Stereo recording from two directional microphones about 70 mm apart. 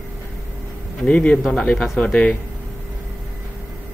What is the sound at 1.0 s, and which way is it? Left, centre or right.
A man's voice, centre.